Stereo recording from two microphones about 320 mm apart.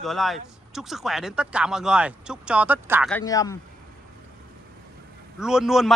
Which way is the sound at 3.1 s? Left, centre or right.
Centre.